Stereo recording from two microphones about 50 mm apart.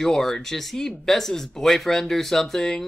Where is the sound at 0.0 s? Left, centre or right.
Centre.